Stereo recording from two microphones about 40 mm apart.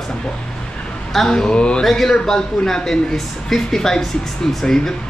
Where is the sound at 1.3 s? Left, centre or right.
Left.